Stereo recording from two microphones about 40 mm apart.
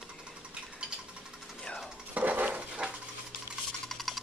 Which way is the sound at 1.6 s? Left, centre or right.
Left.